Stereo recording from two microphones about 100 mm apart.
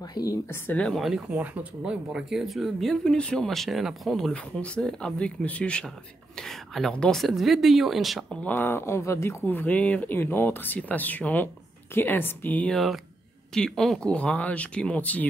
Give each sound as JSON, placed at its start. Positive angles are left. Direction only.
{"t": 0.1, "sound": "speech", "side_deg": 40}
{"t": 0.5, "sound": "speech", "side_deg": 20}
{"t": 0.8, "sound": "speech", "side_deg": 0}
{"t": 1.3, "sound": "speech", "side_deg": -15}
{"t": 8.4, "sound": "speech", "side_deg": 20}
{"t": 12.7, "sound": "speech", "side_deg": 0}